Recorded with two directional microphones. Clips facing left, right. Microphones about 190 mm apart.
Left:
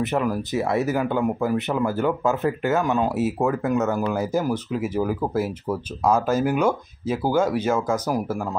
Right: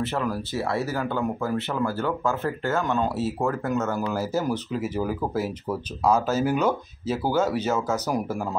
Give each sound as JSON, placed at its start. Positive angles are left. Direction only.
{"t": 0.0, "sound": "speech", "side_deg": 15}
{"t": 3.9, "sound": "speech", "side_deg": 0}
{"t": 4.3, "sound": "speech", "side_deg": 10}